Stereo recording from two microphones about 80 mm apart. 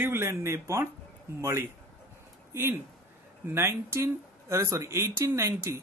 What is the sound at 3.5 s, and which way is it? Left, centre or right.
Speech, right.